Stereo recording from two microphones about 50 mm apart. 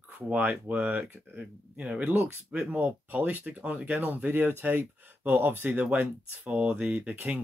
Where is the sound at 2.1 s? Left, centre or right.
Right.